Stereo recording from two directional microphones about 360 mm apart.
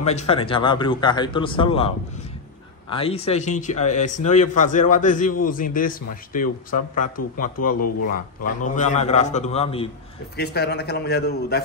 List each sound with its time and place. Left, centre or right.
0.0 s speech: centre
2.9 s a man's voice: centre
10.3 s a man's voice: left